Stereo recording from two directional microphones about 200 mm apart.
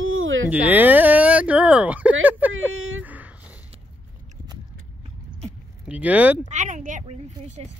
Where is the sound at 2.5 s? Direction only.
90° right.